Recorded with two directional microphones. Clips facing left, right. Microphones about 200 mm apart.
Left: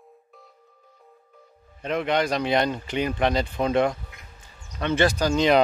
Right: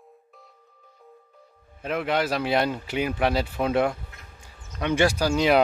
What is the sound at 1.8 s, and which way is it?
Speech, 5° right (ahead or behind).